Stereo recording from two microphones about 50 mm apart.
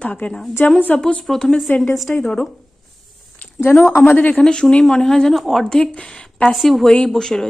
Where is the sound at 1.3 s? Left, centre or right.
Centre.